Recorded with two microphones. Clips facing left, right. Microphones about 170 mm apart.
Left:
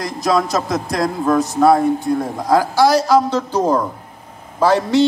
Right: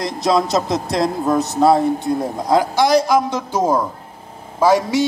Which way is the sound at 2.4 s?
20° right (ahead or behind).